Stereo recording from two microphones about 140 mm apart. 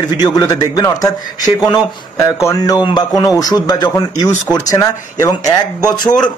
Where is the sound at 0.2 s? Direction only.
25° left (ahead or behind).